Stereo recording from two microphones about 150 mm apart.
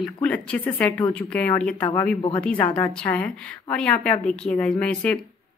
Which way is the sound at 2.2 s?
35° left (ahead or behind).